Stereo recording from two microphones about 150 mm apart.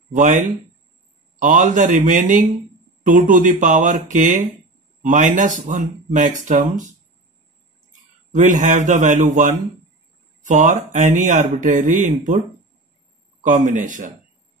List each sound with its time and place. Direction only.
0.1 s speech: 55° right (ahead or behind)
8.3 s speech: 55° right (ahead or behind)
13.4 s speech: 55° right (ahead or behind)